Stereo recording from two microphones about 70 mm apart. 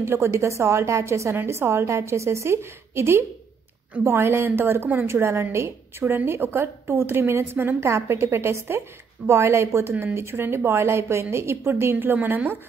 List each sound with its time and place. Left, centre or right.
0.0 s a woman's voice: right